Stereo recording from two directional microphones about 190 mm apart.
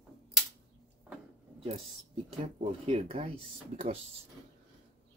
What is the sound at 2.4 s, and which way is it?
Speech, 30° right (ahead or behind).